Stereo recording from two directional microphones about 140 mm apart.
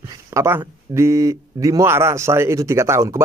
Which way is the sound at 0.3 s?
20° right (ahead or behind).